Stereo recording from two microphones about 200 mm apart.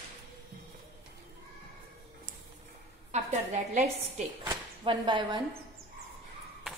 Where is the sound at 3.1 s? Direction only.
35° right (ahead or behind).